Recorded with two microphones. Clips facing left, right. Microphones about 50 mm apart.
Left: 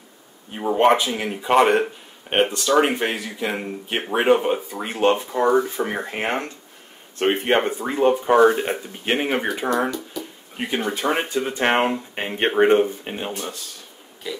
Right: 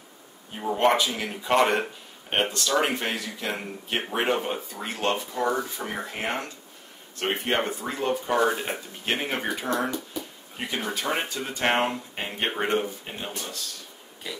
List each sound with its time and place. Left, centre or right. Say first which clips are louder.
0.6 s speech: left 5 dB; left
5.2 s speech: left 8 dB; left
8.5 s speech: left 7 dB; centre
10.8 s speech: left 5 dB; centre